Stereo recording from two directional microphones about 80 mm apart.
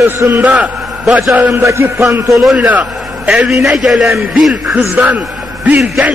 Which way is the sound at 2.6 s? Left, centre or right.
Centre.